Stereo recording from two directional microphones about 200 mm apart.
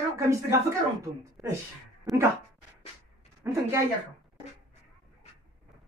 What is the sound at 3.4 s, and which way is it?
Speech, 15° right (ahead or behind).